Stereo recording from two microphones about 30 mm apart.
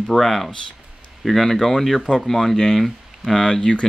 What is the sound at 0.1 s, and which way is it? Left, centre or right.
Speech, centre.